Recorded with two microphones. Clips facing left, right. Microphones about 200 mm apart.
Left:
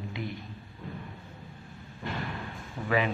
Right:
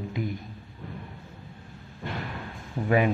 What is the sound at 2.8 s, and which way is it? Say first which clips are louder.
Speech: right 5 dB; 50° right (ahead or behind).